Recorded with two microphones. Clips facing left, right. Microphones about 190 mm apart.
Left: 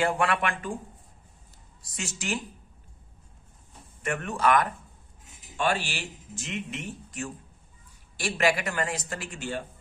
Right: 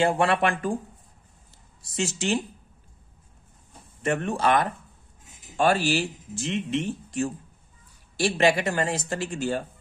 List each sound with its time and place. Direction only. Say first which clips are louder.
0.0 s speech: right 4 dB; 30° right (ahead or behind)
1.8 s speech: right 9 dB; 25° right (ahead or behind)
4.0 s speech: right 2 dB; 30° right (ahead or behind)